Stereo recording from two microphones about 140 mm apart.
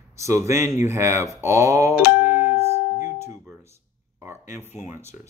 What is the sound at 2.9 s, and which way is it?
Music, 55° left (ahead or behind).